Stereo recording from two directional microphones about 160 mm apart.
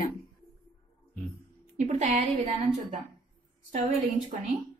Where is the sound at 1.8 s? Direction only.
45° right (ahead or behind).